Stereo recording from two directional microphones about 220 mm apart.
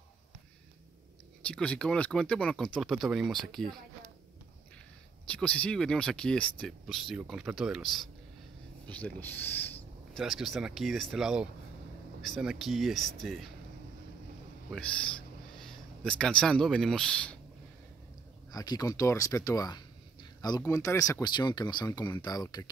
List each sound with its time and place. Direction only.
1.4 s speech: 5° left (ahead or behind)
5.3 s speech: 5° left (ahead or behind)
14.7 s speech: 5° left (ahead or behind)
18.5 s speech: 15° left (ahead or behind)